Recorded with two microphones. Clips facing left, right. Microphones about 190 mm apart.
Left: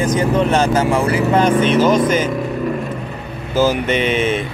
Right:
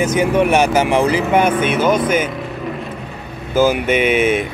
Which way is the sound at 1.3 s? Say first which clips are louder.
Left 2 dB; 10° right (ahead or behind).